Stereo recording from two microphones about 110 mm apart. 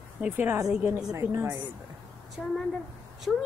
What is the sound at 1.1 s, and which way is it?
Speech, 25° right (ahead or behind).